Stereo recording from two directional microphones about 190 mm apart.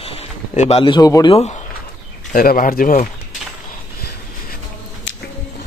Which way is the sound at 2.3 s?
50° left (ahead or behind).